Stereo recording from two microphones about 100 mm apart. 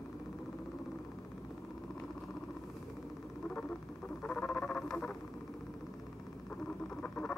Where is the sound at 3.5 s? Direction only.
10° left (ahead or behind).